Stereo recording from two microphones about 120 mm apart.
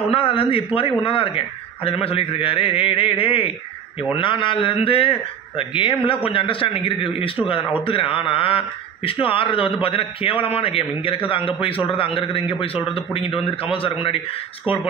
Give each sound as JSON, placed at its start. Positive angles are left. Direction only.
{"t": 0.1, "sound": "a man's voice", "side_deg": 50}